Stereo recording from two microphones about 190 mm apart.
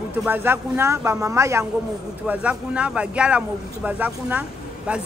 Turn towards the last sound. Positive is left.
turn(degrees=-5)  # may be behind; listen again after turning